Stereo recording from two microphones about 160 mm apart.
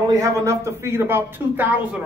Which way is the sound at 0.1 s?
20° right (ahead or behind).